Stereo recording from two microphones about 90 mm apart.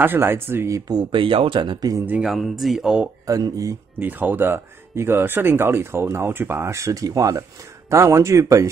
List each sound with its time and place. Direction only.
0.0 s speech: 25° right (ahead or behind); by 1.0 s 40° right (ahead or behind)
1.1 s speech: 75° right (ahead or behind)
1.8 s speech: 40° right (ahead or behind)
2.2 s speech: centre (ahead or behind)
3.3 s speech: 40° right (ahead or behind)
4.0 s speech: 20° right (ahead or behind)